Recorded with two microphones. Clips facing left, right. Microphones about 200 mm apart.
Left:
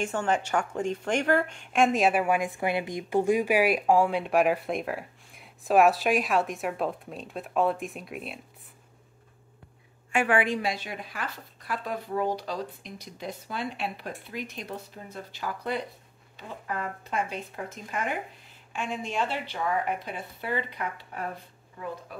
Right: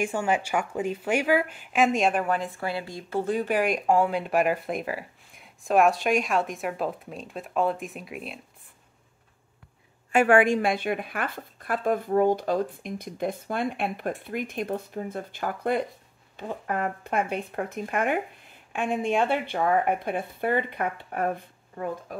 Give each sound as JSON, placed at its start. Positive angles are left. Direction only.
{"t": 0.0, "sound": "a woman's voice", "side_deg": -10}
{"t": 10.1, "sound": "speech", "side_deg": -45}